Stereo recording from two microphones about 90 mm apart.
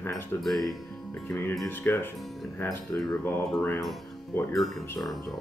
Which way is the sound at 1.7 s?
25° left (ahead or behind).